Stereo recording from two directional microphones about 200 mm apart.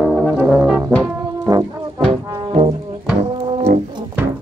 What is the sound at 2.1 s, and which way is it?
Brass instrument, 30° right (ahead or behind).